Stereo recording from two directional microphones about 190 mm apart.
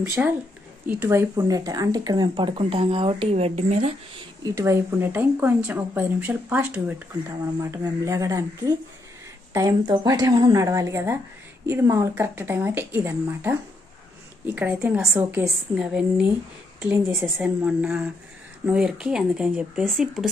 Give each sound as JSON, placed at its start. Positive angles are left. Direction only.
{"t": 0.0, "sound": "speech", "side_deg": -15}
{"t": 4.4, "sound": "speech", "side_deg": -15}